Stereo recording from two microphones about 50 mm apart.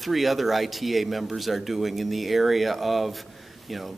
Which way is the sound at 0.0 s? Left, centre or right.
Centre.